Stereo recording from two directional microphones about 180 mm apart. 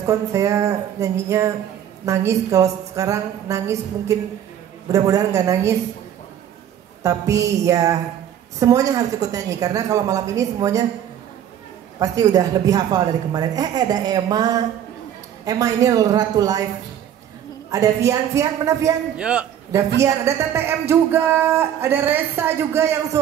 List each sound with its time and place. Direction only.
0.0 s speech: 15° right (ahead or behind)
7.0 s a woman's voice: 15° right (ahead or behind)
12.0 s a woman's voice: 20° right (ahead or behind)
17.6 s speech: 15° right (ahead or behind)
19.1 s speech: 5° right (ahead or behind)